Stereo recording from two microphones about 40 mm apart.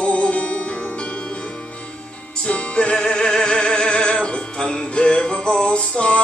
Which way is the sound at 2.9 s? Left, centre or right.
Centre.